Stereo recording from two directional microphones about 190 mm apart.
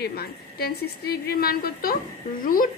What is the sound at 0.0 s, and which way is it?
A woman's voice, 55° left (ahead or behind).